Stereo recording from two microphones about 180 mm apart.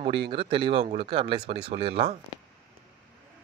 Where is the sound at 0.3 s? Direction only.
30° right (ahead or behind).